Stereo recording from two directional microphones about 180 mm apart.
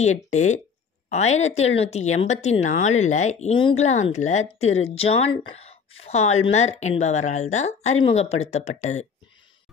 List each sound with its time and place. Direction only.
0.0 s a woman's voice: 40° left (ahead or behind)